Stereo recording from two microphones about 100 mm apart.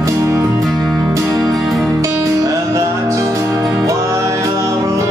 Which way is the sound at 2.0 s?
30° right (ahead or behind).